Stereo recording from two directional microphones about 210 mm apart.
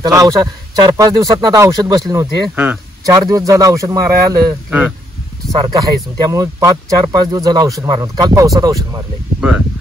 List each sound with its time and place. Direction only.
0.0 s a man's voice: 15° right (ahead or behind)
5.5 s a man's voice: 20° right (ahead or behind)